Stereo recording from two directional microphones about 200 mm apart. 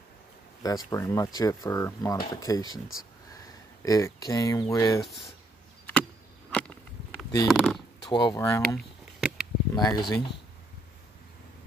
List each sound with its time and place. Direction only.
0.6 s speech: 20° left (ahead or behind)
3.8 s speech: 15° left (ahead or behind)
6.5 s a sound: 5° left (ahead or behind)
7.4 s speech: centre (ahead or behind)
8.1 s speech: 20° left (ahead or behind)
8.7 s a sound: 5° right (ahead or behind)
9.8 s speech: 20° left (ahead or behind)